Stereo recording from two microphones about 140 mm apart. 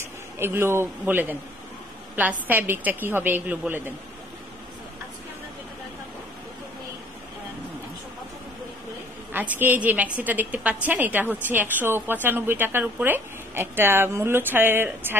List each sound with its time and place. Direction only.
0.0 s a man's voice: 15° right (ahead or behind)
9.3 s a woman's voice: 15° right (ahead or behind)